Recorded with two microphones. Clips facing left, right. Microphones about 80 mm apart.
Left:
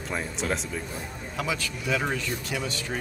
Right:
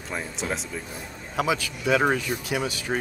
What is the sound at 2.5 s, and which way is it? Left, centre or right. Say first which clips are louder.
Speech: right 5 dB; right.